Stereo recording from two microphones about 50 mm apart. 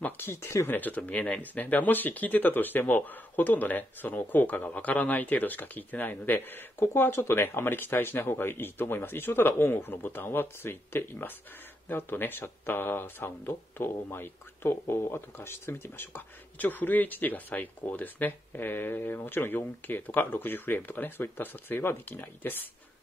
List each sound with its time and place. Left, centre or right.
0.3 s speech: left
0.7 s speech: left